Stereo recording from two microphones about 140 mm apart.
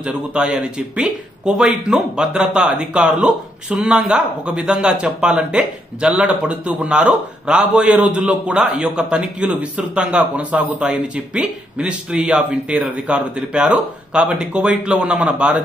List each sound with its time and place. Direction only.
0.0 s speech: 10° right (ahead or behind)